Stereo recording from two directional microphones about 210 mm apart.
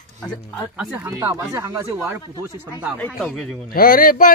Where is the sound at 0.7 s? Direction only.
5° right (ahead or behind).